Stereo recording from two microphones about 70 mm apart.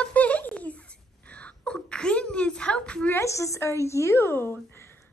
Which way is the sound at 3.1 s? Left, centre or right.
Left.